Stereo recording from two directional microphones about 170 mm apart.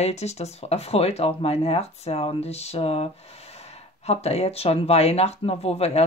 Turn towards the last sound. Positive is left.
turn(degrees=35)  # may be behind; listen again after turning